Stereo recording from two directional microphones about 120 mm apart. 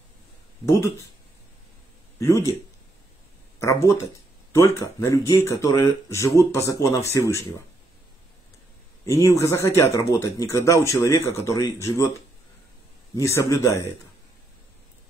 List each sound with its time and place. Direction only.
0.7 s speech: 25° left (ahead or behind)
2.1 s speech: 25° left (ahead or behind)
3.5 s speech: 25° left (ahead or behind)
9.2 s speech: 25° left (ahead or behind)